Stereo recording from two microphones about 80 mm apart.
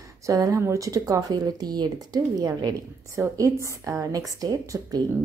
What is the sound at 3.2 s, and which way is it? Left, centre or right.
A woman's voice, right.